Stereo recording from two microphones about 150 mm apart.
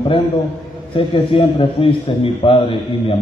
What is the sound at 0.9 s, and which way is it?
A man's voice, 35° left (ahead or behind).